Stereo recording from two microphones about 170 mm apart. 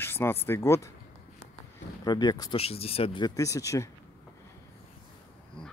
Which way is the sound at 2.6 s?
35° left (ahead or behind).